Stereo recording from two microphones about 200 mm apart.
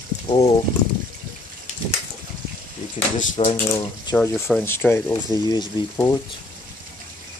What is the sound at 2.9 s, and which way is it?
Speech, 30° left (ahead or behind).